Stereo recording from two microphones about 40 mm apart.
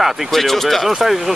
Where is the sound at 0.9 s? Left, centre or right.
Centre.